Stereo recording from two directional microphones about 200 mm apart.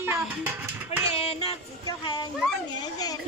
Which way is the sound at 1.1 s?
30° left (ahead or behind).